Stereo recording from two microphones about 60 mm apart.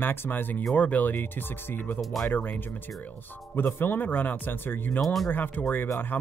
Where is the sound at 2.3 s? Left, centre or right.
Left.